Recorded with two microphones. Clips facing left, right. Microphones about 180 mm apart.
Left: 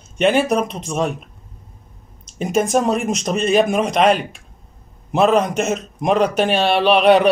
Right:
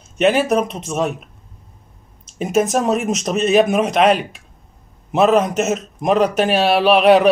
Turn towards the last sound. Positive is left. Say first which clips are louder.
# right 1 dB
turn(degrees=0)  # may be behind; listen again after turning